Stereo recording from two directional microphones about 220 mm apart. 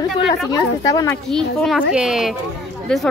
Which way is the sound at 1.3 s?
Centre (ahead or behind).